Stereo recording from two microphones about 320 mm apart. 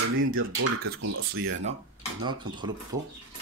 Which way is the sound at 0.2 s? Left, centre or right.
Right.